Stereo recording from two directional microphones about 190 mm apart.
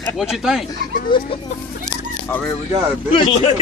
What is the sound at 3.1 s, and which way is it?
Speech, 30° left (ahead or behind).